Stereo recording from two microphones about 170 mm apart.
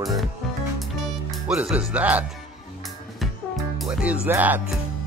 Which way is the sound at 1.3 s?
5° right (ahead or behind).